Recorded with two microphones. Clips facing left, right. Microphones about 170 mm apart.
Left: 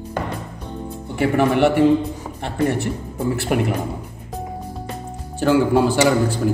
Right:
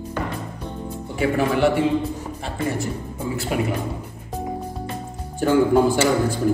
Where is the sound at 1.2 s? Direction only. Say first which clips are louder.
Left 3 dB; 65° left (ahead or behind).